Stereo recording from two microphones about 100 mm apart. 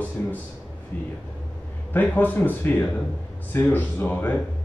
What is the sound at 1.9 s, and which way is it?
A man's voice, 15° left (ahead or behind).